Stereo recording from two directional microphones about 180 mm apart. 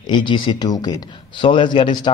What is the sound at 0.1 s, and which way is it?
Speech, 25° left (ahead or behind).